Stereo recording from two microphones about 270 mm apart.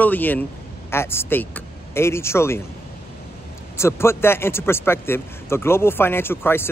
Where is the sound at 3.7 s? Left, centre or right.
Centre.